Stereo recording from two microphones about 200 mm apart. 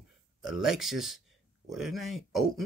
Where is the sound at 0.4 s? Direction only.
Centre (ahead or behind).